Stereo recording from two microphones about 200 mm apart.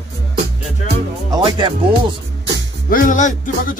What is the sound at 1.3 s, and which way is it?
Speech, 25° right (ahead or behind).